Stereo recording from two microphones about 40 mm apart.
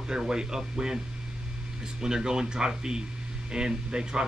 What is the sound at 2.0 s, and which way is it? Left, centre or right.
Speech, centre.